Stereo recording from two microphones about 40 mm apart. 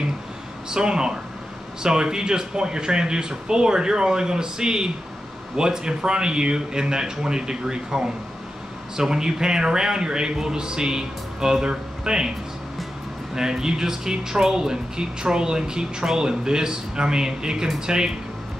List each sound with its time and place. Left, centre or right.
0.7 s a man's voice: centre
13.3 s a man's voice: centre